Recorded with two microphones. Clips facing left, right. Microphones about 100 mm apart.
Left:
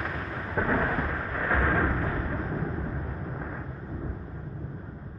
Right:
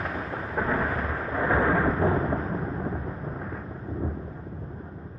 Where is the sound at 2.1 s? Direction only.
Centre (ahead or behind).